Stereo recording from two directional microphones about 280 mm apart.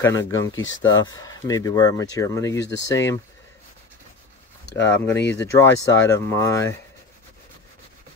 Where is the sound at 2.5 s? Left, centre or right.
Left.